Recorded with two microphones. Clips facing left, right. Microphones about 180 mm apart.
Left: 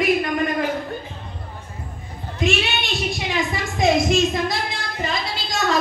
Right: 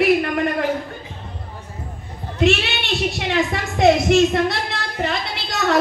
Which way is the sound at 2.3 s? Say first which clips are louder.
Right 4 dB; 70° right (ahead or behind).